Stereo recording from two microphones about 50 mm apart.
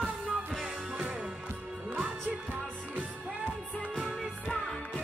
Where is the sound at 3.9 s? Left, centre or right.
Centre.